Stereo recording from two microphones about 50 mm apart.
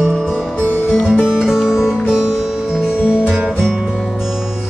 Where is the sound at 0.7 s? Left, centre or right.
Left.